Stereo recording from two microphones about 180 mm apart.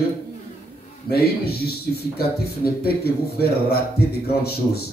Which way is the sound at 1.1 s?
60° left (ahead or behind).